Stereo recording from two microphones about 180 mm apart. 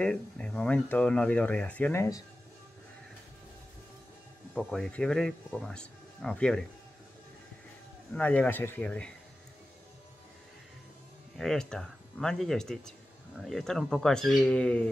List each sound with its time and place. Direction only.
0.0 s speech: 5° left (ahead or behind)
4.6 s speech: centre (ahead or behind)
8.1 s speech: 5° left (ahead or behind)
11.3 s speech: 5° left (ahead or behind)